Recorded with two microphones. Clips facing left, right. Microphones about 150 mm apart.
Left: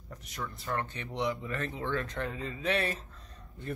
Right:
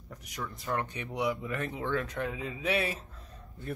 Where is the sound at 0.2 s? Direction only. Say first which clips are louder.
Right 1 dB; 10° right (ahead or behind).